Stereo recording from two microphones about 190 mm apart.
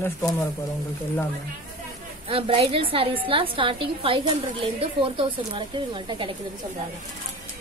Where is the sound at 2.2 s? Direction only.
30° right (ahead or behind).